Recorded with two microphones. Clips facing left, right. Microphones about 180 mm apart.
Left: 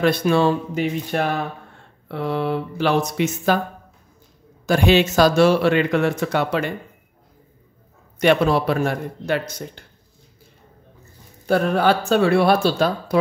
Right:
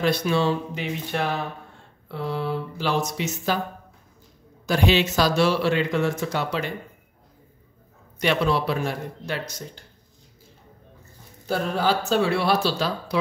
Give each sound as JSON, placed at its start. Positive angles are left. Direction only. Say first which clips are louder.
{"t": 0.0, "sound": "speech", "louder": "left 5 dB", "side_deg": 55}
{"t": 2.0, "sound": "speech", "louder": "left 5 dB", "side_deg": 65}
{"t": 4.6, "sound": "speech", "louder": "left 5 dB", "side_deg": 50}
{"t": 8.2, "sound": "speech", "louder": "left 6 dB", "side_deg": 50}
{"t": 11.4, "sound": "speech", "louder": "left 6 dB", "side_deg": 60}